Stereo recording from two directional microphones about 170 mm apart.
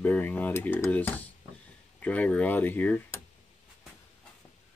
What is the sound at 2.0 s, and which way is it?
Speech, 10° left (ahead or behind).